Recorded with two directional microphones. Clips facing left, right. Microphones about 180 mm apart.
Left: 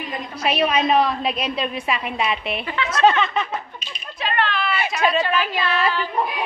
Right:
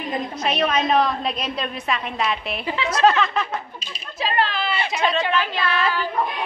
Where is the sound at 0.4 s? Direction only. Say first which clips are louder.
Left 3 dB; 10° left (ahead or behind).